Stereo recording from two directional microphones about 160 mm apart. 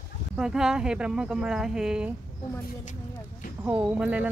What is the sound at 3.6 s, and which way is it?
Speech, 10° right (ahead or behind).